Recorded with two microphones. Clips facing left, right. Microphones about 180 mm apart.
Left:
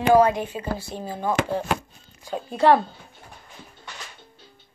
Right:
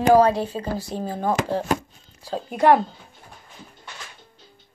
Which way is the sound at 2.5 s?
15° right (ahead or behind).